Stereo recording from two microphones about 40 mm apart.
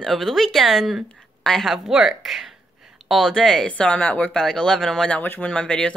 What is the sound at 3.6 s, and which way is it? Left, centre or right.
Speech, left.